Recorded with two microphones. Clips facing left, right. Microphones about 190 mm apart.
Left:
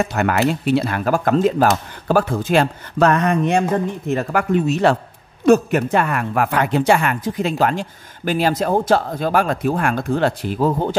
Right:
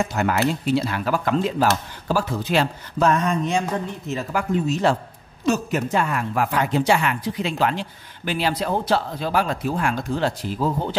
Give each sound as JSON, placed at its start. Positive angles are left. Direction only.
{"t": 0.0, "sound": "speech", "side_deg": 65}